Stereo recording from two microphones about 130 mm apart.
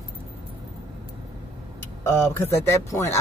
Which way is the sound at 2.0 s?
20° left (ahead or behind).